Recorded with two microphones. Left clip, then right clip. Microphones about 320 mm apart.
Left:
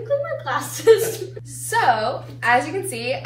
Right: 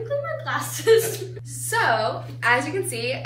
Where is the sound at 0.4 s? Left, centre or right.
Centre.